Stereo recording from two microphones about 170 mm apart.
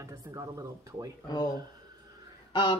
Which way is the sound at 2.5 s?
25° left (ahead or behind).